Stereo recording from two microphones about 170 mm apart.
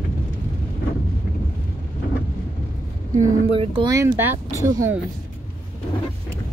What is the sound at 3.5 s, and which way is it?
Speech, 30° right (ahead or behind).